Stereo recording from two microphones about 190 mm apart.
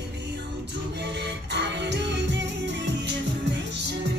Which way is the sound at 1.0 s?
65° right (ahead or behind).